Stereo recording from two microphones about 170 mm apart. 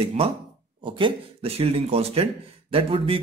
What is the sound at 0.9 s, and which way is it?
A man's voice, 30° right (ahead or behind).